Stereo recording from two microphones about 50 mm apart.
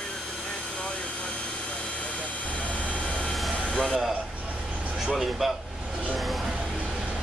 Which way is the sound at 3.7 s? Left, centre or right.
Centre.